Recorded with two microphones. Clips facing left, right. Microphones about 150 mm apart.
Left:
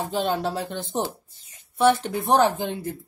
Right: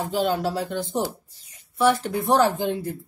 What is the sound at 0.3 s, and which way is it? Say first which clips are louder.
Speech: right 1 dB; 25° left (ahead or behind).